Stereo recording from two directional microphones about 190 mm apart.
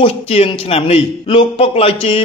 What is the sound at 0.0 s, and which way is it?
A man's voice, 30° left (ahead or behind).